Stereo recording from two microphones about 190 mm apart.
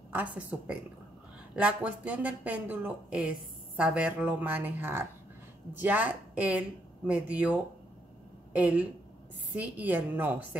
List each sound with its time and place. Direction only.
0.1 s speech: 10° right (ahead or behind)